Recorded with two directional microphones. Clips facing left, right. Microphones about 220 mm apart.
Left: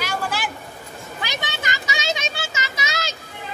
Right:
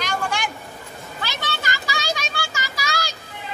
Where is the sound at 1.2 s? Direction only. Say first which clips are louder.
Even; 20° left (ahead or behind).